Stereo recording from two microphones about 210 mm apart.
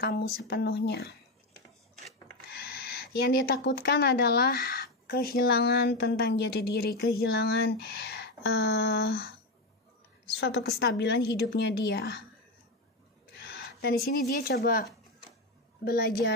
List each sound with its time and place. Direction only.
0.0 s a woman's voice: 50° left (ahead or behind)
2.5 s speech: 50° left (ahead or behind)
10.4 s a woman's voice: 55° left (ahead or behind)
13.4 s a woman's voice: 50° left (ahead or behind)